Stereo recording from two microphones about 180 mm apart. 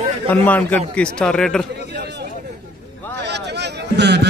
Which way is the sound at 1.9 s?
60° right (ahead or behind).